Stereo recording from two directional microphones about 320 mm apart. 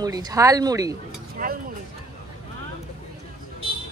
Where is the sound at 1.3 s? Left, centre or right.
Right.